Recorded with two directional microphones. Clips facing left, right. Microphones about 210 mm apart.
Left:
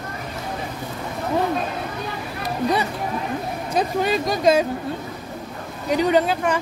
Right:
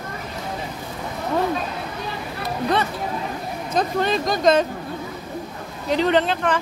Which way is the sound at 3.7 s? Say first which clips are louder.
Even; 10° left (ahead or behind).